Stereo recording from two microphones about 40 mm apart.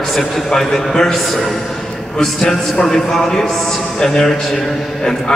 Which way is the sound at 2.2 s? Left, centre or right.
Centre.